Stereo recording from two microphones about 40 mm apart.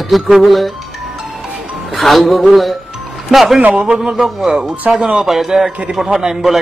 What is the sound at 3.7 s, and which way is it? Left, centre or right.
Speech, right.